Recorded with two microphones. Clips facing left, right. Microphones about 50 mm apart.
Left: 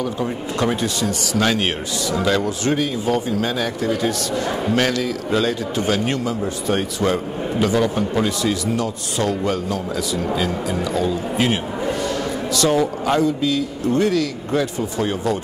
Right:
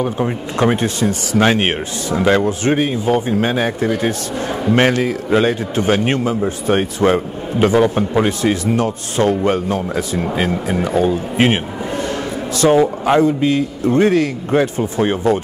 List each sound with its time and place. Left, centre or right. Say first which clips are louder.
0.0 s a man's voice: right 4 dB; right